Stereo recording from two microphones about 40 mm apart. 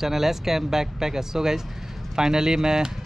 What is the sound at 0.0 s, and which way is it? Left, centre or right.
Speech, centre.